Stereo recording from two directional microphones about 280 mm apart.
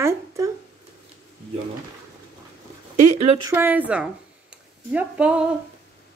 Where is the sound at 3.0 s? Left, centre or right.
Right.